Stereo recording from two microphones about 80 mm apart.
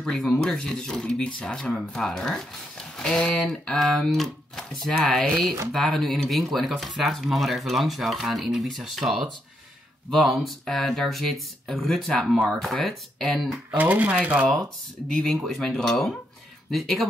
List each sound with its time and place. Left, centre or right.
0.0 s speech: centre
13.7 s speech: centre
15.0 s speech: centre